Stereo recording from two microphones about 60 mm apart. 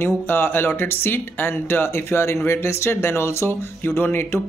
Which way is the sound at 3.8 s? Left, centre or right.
Left.